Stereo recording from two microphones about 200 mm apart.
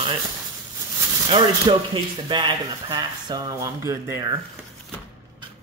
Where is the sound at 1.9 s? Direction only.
25° right (ahead or behind).